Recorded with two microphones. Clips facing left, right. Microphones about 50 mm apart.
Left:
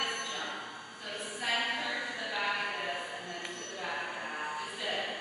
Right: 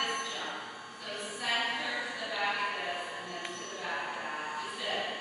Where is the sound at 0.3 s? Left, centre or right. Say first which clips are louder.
Even; centre.